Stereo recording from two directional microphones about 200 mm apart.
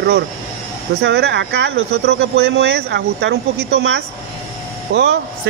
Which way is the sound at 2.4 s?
55° right (ahead or behind).